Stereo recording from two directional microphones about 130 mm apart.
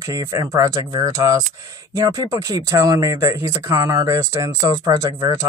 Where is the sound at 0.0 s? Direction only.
25° right (ahead or behind).